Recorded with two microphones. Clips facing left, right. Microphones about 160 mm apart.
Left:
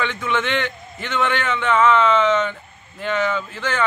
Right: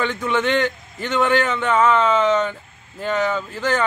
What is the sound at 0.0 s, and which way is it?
Speech, 40° right (ahead or behind).